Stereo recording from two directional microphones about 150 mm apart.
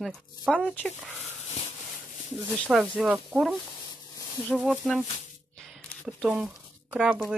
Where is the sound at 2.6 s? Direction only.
Centre (ahead or behind).